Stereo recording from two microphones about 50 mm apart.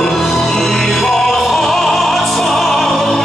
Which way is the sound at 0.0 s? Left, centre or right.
Centre.